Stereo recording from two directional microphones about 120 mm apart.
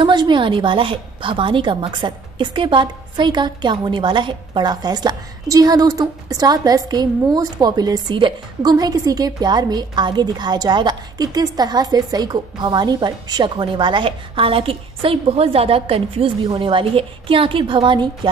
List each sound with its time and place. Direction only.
0.0 s a woman's voice: 40° right (ahead or behind)